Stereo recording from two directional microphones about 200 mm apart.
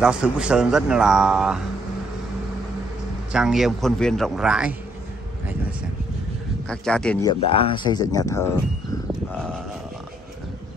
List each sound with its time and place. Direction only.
0.0 s a man's voice: 5° right (ahead or behind)
3.3 s a man's voice: 5° right (ahead or behind)
6.7 s a man's voice: 5° left (ahead or behind)
7.2 s speech: 25° left (ahead or behind)
9.3 s a man's voice: 5° left (ahead or behind)